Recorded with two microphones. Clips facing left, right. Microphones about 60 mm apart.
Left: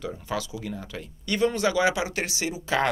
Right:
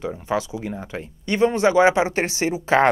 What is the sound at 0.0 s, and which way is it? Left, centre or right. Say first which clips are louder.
Speech: right 6 dB; right.